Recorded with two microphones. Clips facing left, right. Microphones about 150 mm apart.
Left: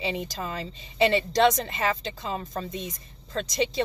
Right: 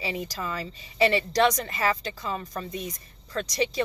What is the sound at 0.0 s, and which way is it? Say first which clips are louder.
Speech: left 1 dB; 25° left (ahead or behind).